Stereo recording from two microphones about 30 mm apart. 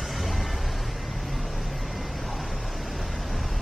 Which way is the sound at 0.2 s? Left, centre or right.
Centre.